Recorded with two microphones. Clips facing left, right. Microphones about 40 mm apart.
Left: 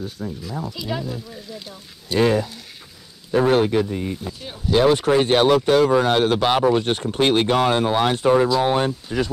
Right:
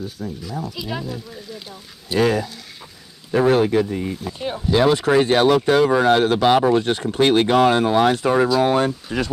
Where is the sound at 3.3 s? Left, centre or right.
Right.